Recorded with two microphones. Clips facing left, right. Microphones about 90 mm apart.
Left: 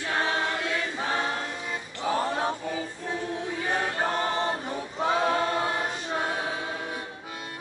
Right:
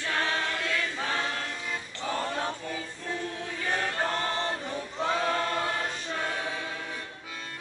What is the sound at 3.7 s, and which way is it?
Choir, 15° left (ahead or behind).